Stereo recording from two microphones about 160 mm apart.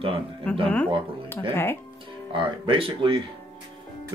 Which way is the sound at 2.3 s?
35° right (ahead or behind).